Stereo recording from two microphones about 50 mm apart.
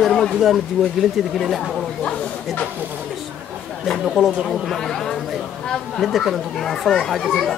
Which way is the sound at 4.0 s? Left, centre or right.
Centre.